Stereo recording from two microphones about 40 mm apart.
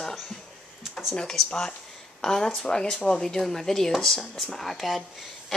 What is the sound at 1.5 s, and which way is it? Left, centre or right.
Speech, centre.